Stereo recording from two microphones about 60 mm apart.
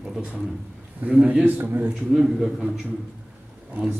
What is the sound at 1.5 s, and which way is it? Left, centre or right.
Speech, right.